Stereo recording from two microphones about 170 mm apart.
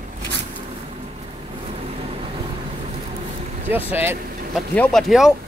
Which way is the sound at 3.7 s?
10° right (ahead or behind).